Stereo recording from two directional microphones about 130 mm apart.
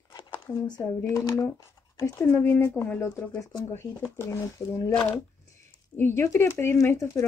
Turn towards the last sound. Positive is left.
turn(degrees=25)  # may be behind; listen again after turning